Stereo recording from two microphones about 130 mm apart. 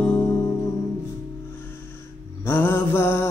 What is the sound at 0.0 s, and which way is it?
Music, 15° left (ahead or behind).